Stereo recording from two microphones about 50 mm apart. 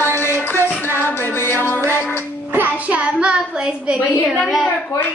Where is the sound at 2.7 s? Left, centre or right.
Right.